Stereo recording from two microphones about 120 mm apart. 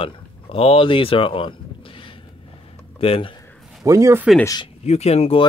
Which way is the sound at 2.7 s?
50° left (ahead or behind).